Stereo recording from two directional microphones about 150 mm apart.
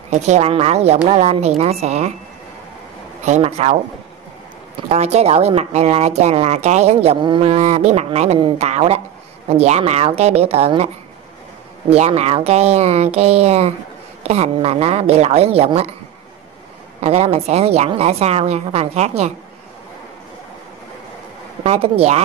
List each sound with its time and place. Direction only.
0.1 s speech: 50° right (ahead or behind)
3.3 s speech: 45° right (ahead or behind)
4.7 s speech: 45° right (ahead or behind)
11.9 s speech: 45° right (ahead or behind)
17.0 s speech: 45° right (ahead or behind)
21.6 s speech: 40° right (ahead or behind)